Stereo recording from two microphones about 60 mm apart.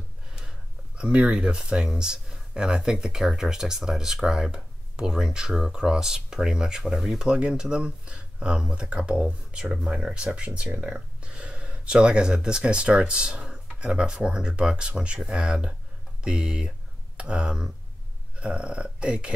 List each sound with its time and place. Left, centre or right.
0.9 s speech: centre